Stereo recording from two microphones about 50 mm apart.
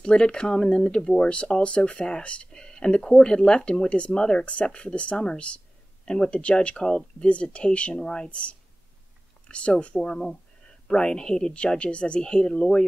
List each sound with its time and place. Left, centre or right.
0.0 s speech: centre